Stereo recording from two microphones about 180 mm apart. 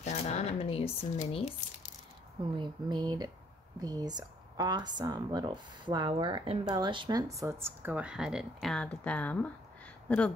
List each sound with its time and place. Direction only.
0.0 s speech: 40° left (ahead or behind)
2.5 s speech: 25° right (ahead or behind); by 10.3 s 5° left (ahead or behind)